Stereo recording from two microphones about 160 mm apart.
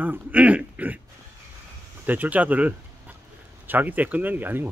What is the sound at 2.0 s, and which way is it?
Speech, 10° right (ahead or behind).